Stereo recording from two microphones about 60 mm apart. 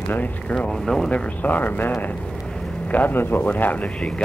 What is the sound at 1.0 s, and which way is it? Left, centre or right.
Speech, left.